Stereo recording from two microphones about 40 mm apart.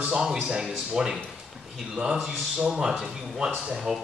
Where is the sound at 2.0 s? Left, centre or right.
Right.